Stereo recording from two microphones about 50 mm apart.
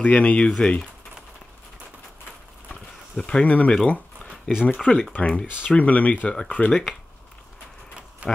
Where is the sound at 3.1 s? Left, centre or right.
Centre.